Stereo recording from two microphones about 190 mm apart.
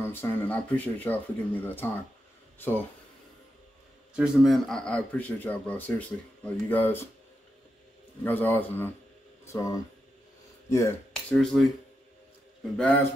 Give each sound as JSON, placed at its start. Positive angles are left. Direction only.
{"t": 0.0, "sound": "a man's voice", "side_deg": 10}
{"t": 4.1, "sound": "a man's voice", "side_deg": -5}
{"t": 8.2, "sound": "a man's voice", "side_deg": 10}
{"t": 11.5, "sound": "speech", "side_deg": 5}
{"t": 12.7, "sound": "a man's voice", "side_deg": 5}